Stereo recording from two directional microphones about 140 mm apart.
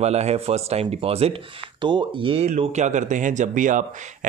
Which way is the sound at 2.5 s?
55° right (ahead or behind).